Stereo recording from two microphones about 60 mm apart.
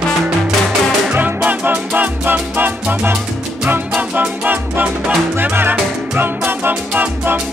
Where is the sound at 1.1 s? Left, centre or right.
Right.